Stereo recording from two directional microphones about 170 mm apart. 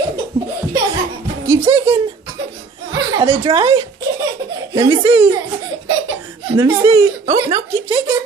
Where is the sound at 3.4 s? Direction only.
30° right (ahead or behind).